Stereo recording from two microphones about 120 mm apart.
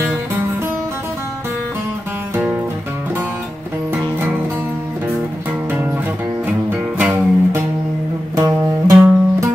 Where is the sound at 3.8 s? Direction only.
20° right (ahead or behind).